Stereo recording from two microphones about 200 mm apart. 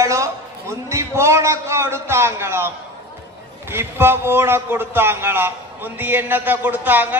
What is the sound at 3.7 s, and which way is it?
A man's voice, 10° right (ahead or behind).